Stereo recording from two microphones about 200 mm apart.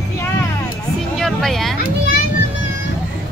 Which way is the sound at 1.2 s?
Centre (ahead or behind).